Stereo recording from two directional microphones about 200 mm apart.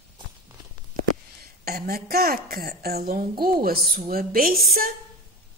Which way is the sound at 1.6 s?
50° right (ahead or behind).